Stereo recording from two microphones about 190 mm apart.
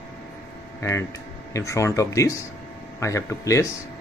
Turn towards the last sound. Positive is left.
turn(degrees=15)  # may be behind; listen again after turning